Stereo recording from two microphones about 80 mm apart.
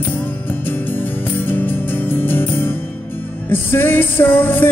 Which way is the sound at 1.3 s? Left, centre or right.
Left.